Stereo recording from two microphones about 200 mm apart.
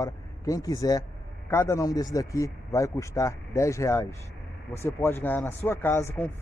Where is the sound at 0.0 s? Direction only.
15° left (ahead or behind).